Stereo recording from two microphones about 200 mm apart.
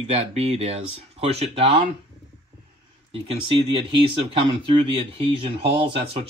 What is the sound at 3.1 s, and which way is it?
Speech, 30° right (ahead or behind).